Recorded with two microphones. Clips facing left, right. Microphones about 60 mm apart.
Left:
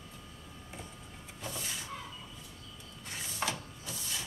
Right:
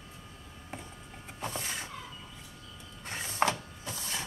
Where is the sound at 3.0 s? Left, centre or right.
Right.